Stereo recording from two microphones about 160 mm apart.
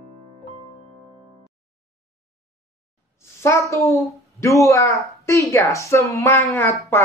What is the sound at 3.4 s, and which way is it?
A child's voice, 20° left (ahead or behind).